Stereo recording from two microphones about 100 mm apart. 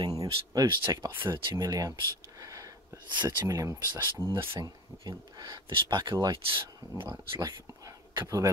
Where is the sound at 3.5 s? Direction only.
30° right (ahead or behind).